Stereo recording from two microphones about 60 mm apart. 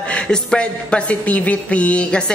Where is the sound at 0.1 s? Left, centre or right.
Centre.